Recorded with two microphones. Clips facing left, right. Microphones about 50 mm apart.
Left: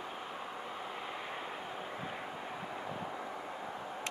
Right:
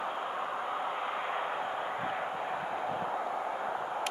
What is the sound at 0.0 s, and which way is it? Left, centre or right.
Vehicle, right.